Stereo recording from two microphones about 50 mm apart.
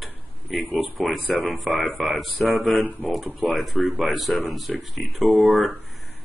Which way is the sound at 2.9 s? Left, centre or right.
Right.